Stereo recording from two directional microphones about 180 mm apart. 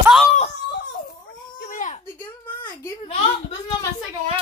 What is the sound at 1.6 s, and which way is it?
Baby cry, 40° left (ahead or behind).